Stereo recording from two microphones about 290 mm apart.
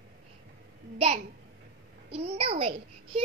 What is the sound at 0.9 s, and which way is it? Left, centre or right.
Speech, centre.